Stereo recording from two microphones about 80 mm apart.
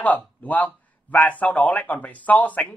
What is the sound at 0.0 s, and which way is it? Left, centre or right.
A man's voice, centre.